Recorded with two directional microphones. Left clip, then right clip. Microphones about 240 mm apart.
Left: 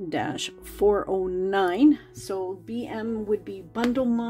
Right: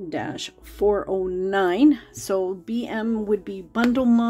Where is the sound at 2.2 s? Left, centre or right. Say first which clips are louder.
Right 6 dB; right.